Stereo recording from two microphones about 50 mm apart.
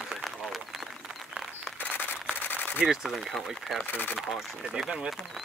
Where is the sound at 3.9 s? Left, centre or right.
Left.